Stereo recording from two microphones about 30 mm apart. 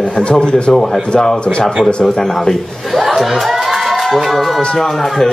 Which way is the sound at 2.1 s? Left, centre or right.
Centre.